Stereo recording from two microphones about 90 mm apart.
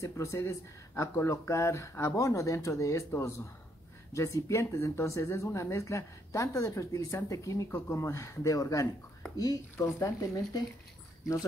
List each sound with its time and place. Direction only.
0.0 s speech: 30° left (ahead or behind)